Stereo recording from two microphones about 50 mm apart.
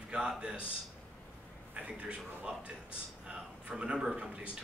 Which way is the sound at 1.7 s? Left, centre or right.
Right.